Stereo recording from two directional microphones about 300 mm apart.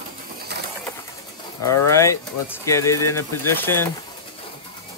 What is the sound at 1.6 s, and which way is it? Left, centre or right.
Speech, left.